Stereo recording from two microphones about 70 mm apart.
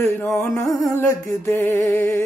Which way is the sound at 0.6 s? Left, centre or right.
Centre.